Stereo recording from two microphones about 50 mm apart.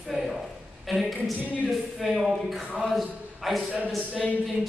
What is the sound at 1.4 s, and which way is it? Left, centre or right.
Speech, right.